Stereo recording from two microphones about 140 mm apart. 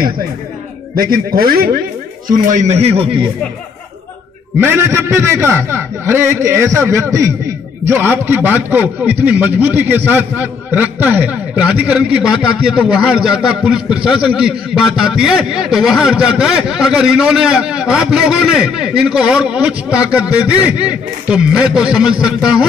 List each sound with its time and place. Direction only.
0.9 s speech: 90° right
2.2 s a man's voice: 70° right (ahead or behind); by 3.3 s 40° right (ahead or behind)
4.6 s a man's voice: 15° right (ahead or behind)